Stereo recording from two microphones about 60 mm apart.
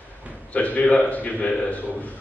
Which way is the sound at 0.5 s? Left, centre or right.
Left.